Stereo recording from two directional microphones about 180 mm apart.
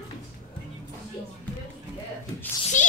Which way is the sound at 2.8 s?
45° left (ahead or behind).